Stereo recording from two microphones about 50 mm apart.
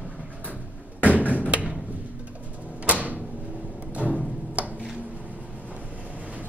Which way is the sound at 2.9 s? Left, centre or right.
Right.